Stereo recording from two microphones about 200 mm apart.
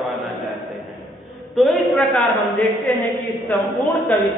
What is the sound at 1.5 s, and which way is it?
A woman's voice, centre (ahead or behind).